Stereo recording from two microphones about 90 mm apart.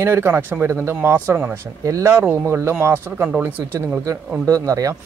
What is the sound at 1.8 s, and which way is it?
Speech, 35° right (ahead or behind).